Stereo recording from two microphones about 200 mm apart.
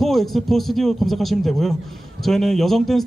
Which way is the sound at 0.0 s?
Centre (ahead or behind).